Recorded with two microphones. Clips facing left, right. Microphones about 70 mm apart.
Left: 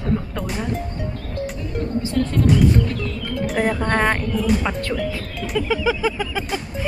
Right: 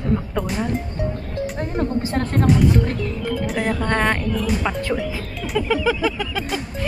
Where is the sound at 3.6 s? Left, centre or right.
Centre.